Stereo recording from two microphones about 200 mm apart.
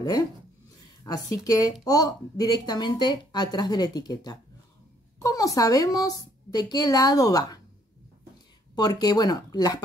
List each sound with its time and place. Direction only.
1.0 s a woman's voice: 15° left (ahead or behind)
8.7 s a woman's voice: 20° left (ahead or behind)